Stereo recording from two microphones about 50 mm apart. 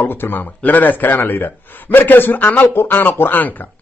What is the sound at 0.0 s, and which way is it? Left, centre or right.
A man's voice, left.